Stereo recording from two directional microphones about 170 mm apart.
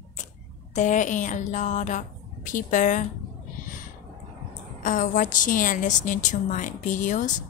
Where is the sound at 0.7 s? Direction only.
45° left (ahead or behind).